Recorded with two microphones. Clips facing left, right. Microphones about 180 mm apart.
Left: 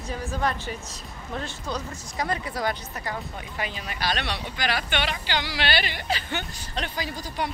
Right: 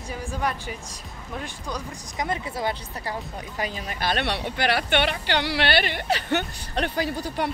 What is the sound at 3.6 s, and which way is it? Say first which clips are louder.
A woman's voice: right 2 dB; 45° right (ahead or behind).